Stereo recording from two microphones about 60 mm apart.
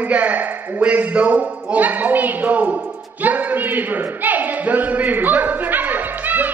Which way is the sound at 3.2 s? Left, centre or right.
Right.